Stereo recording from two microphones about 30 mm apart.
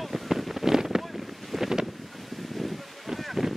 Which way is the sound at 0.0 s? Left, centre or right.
Centre.